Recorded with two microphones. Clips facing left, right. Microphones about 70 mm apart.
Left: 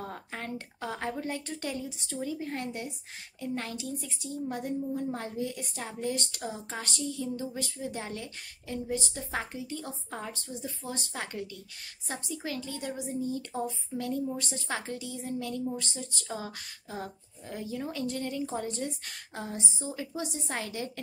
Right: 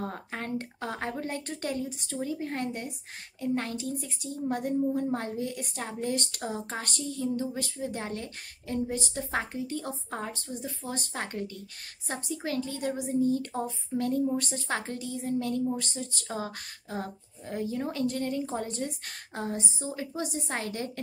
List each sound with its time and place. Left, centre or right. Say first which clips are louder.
0.0 s a woman's voice: right 3 dB; right
10.6 s a woman's voice: right 1 dB; right